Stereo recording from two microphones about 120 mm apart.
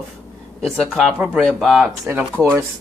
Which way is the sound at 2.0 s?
15° right (ahead or behind).